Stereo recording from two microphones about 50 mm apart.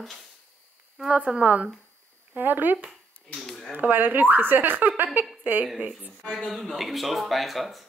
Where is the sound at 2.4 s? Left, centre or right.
Right.